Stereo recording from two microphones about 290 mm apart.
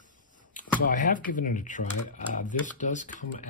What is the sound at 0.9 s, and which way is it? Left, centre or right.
Speech, left.